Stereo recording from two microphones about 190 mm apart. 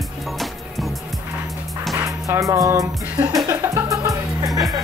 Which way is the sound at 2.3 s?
15° right (ahead or behind).